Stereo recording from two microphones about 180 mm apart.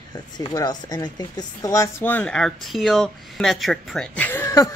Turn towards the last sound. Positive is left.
turn(degrees=15)  # may be behind; listen again after turning